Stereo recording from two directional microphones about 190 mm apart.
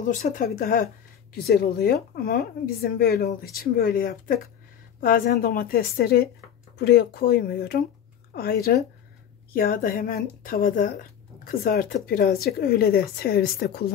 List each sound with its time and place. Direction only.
0.1 s speech: 45° left (ahead or behind)